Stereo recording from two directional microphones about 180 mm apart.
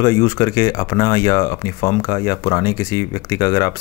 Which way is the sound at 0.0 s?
15° left (ahead or behind).